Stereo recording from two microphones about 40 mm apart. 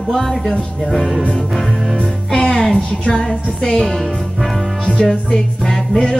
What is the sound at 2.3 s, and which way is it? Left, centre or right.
Music, centre.